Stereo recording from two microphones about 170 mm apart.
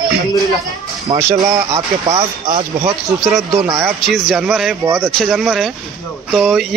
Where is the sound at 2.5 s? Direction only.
20° right (ahead or behind).